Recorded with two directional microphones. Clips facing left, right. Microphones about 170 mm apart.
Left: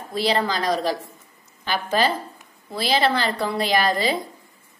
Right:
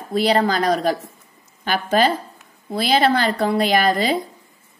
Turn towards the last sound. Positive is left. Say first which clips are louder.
# right 3 dB
turn(degrees=-50)  # may be behind; listen again after turning